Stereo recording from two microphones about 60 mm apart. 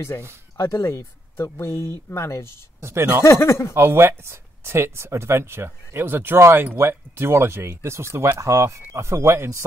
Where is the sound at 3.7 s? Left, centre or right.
Right.